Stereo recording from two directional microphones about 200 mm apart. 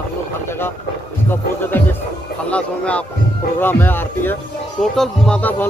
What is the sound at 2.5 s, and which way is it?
Speech, 5° left (ahead or behind).